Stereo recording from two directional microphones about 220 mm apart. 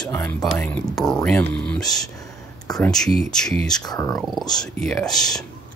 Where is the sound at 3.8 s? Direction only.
15° left (ahead or behind).